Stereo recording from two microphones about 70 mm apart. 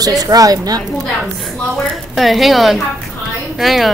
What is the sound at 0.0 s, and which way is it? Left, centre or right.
Speech, right.